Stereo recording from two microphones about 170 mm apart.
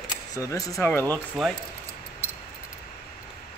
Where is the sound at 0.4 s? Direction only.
20° left (ahead or behind).